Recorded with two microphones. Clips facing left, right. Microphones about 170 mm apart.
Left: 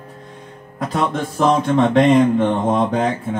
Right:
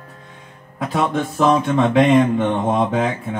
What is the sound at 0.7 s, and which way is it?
Speech, centre (ahead or behind).